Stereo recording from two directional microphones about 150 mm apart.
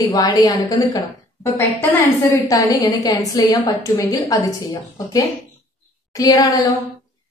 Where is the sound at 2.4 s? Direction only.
25° left (ahead or behind).